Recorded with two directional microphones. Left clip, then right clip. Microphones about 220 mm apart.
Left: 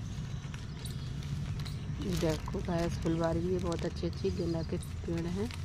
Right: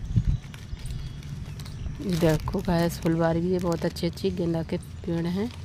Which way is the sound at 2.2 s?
50° right (ahead or behind).